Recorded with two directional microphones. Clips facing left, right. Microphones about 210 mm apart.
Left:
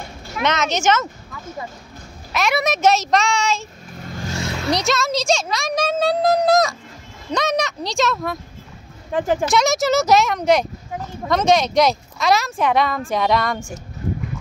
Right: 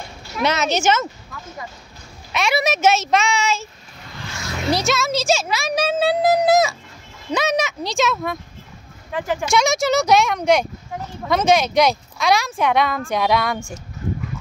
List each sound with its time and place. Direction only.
0.5 s speech: 5° right (ahead or behind)
3.9 s vehicle: 45° left (ahead or behind)
4.6 s speech: centre (ahead or behind)
9.1 s speech: 45° left (ahead or behind)
9.5 s speech: centre (ahead or behind)